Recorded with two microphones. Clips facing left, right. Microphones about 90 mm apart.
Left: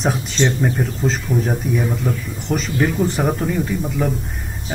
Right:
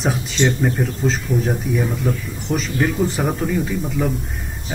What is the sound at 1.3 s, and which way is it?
Speech, 40° left (ahead or behind).